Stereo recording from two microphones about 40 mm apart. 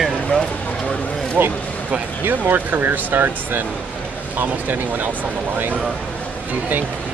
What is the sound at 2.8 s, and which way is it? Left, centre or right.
Speech, right.